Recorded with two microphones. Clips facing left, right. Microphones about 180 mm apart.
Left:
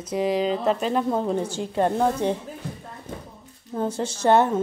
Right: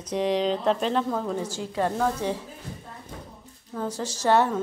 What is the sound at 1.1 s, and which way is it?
Speech, 25° left (ahead or behind).